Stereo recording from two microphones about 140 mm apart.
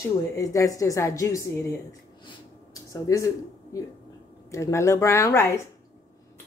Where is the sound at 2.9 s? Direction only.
25° left (ahead or behind).